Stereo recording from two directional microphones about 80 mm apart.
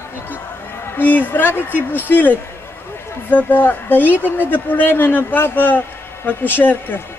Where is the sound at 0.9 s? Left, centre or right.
Left.